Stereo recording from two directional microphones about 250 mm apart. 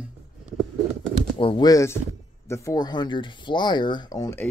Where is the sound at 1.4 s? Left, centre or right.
Centre.